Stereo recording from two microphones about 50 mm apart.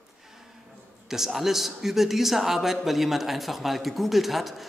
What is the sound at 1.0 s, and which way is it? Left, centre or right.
A man's voice, centre.